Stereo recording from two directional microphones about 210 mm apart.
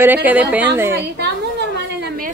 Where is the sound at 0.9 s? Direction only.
55° right (ahead or behind).